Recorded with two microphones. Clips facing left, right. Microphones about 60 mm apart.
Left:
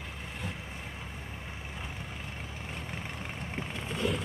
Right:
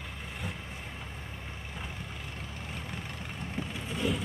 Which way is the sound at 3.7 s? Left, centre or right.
Centre.